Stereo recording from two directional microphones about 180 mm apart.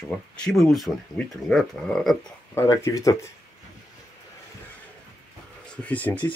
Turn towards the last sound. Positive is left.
turn(degrees=10)  # may be behind; listen again after turning